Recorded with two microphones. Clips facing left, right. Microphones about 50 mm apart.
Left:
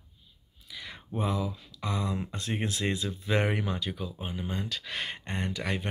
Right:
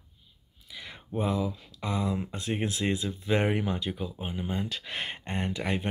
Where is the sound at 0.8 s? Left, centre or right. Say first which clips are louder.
Right 2 dB; centre.